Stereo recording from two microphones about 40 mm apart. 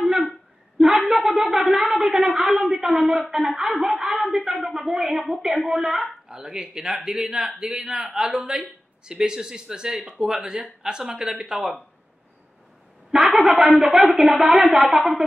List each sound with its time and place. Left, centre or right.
0.0 s a sound: centre
0.7 s a woman's voice: centre
13.1 s speech: centre